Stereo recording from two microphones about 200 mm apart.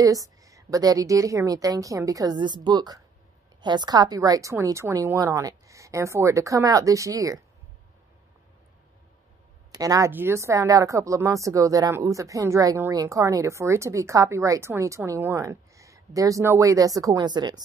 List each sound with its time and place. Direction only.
0.0 s speech: 15° right (ahead or behind)
9.8 s speech: 15° right (ahead or behind)